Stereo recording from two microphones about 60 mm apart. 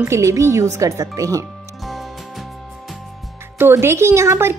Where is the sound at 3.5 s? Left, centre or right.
Right.